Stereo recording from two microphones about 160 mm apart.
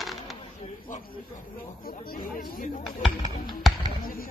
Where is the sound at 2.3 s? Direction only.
60° left (ahead or behind).